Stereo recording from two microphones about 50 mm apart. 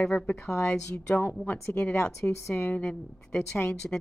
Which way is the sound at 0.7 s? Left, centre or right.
Left.